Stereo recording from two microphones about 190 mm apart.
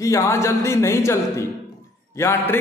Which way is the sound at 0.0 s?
15° left (ahead or behind).